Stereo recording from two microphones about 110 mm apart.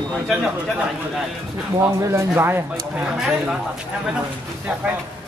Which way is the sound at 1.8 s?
25° right (ahead or behind).